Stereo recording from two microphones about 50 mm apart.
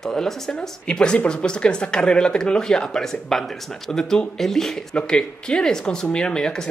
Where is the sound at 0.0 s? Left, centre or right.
Centre.